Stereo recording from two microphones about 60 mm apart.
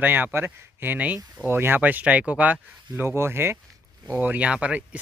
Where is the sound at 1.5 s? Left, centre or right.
Right.